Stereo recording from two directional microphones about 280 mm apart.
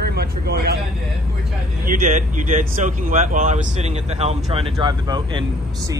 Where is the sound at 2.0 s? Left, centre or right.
Right.